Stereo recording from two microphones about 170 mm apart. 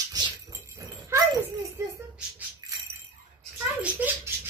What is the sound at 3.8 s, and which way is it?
Speech, 10° right (ahead or behind).